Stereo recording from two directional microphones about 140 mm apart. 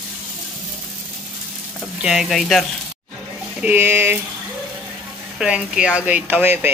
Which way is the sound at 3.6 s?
15° right (ahead or behind).